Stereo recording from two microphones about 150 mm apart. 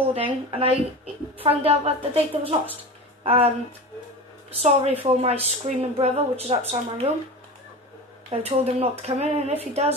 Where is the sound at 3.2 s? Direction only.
40° right (ahead or behind).